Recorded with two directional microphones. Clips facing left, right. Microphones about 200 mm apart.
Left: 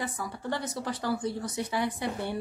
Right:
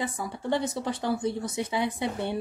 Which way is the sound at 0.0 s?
25° right (ahead or behind).